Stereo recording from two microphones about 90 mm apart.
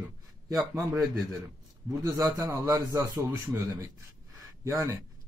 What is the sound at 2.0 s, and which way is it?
Speech, 40° right (ahead or behind).